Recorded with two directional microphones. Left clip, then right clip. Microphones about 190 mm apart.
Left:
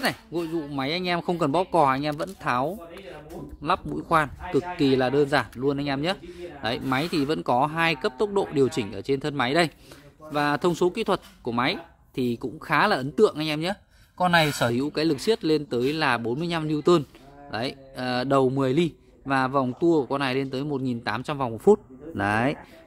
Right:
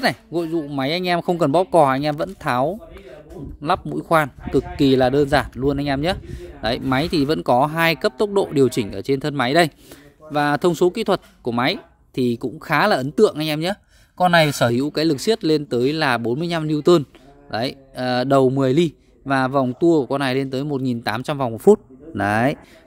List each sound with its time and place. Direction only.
0.0 s speech: 40° right (ahead or behind)